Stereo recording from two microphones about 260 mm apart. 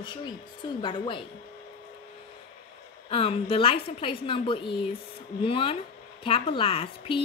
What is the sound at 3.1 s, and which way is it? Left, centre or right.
A woman's voice, left.